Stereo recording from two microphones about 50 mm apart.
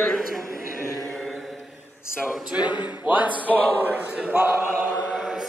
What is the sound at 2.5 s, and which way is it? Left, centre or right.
Music, right.